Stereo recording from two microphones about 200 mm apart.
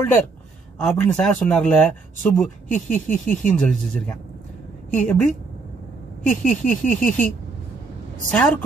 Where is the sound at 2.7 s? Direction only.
40° left (ahead or behind).